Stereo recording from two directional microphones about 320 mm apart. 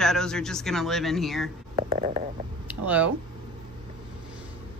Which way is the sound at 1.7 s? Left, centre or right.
Centre.